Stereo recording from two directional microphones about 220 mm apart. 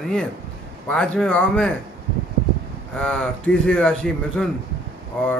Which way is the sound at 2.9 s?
5° left (ahead or behind).